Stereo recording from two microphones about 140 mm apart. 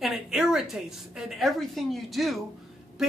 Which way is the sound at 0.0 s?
Centre (ahead or behind).